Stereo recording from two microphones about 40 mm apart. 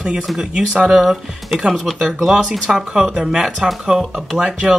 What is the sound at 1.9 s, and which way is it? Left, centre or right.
Speech, centre.